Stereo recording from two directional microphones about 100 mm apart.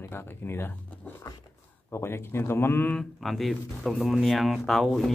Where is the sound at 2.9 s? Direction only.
5° left (ahead or behind).